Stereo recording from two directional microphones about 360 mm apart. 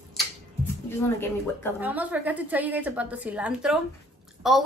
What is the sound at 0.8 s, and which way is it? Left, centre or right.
Speech, centre.